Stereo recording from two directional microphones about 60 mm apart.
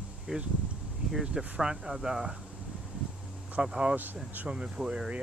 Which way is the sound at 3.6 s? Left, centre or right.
Centre.